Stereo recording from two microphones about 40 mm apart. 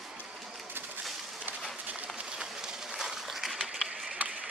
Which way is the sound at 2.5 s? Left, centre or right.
Centre.